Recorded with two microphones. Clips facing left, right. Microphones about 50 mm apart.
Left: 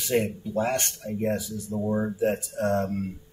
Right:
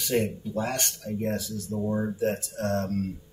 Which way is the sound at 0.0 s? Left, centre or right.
Centre.